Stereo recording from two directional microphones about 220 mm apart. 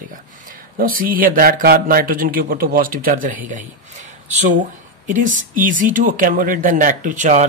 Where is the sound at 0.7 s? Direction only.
40° right (ahead or behind).